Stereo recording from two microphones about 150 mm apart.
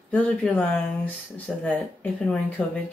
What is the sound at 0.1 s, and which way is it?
Speech, 10° left (ahead or behind).